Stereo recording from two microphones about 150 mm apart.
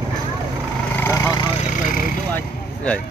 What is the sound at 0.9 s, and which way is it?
Vehicle, 15° left (ahead or behind).